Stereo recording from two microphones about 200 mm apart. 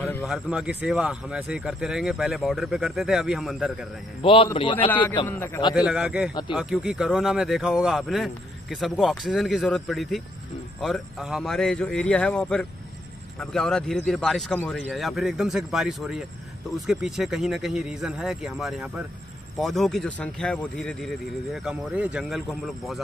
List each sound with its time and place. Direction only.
0.2 s speech: centre (ahead or behind)
4.2 s a man's voice: 25° left (ahead or behind)
5.3 s a man's voice: 10° left (ahead or behind)
5.8 s speech: 5° right (ahead or behind)